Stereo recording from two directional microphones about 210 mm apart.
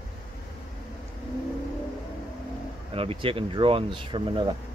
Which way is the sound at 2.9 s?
25° right (ahead or behind).